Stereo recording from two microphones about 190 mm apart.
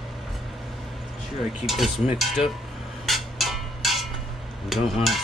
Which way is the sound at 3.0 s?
Centre (ahead or behind).